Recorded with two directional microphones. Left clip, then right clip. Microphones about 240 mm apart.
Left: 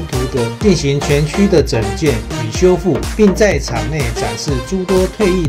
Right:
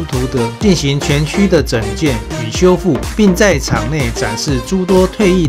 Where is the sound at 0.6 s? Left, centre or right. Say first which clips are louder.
Left 2 dB; right.